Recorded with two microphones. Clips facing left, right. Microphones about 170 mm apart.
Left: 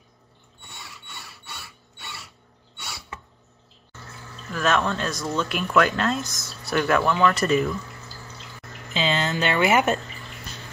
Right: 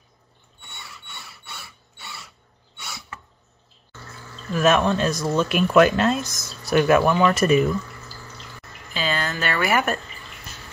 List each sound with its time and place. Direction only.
0.6 s mechanisms: centre (ahead or behind)
2.7 s a sound: centre (ahead or behind)
4.5 s speech: 15° right (ahead or behind)
8.9 s speech: 20° left (ahead or behind)